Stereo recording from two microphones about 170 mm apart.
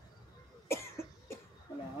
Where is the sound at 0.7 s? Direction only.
15° left (ahead or behind).